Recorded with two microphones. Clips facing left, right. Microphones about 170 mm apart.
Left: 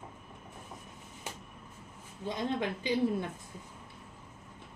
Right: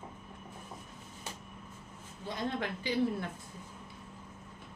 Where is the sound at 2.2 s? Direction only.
20° left (ahead or behind).